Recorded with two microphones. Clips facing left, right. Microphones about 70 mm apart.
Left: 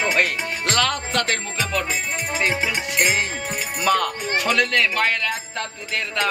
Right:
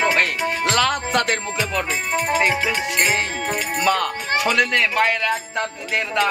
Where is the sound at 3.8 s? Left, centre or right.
Centre.